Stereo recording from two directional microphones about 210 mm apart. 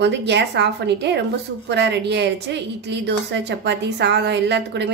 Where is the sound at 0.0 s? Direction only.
55° right (ahead or behind).